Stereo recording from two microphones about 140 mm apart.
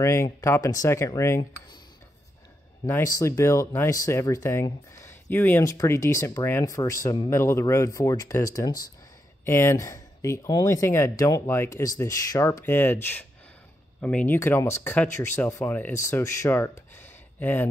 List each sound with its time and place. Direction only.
0.0 s speech: 20° left (ahead or behind)
2.9 s speech: 25° left (ahead or behind)
16.9 s a sound: 15° left (ahead or behind)